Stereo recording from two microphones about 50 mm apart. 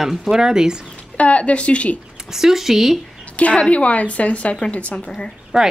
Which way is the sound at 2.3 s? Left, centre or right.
Centre.